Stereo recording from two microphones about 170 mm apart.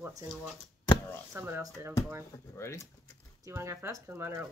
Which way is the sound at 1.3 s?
15° right (ahead or behind).